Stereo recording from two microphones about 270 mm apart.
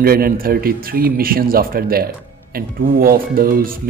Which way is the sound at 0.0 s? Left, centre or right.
Right.